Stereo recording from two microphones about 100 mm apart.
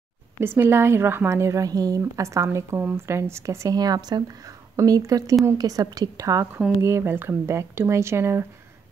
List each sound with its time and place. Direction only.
0.4 s a woman's voice: 25° right (ahead or behind)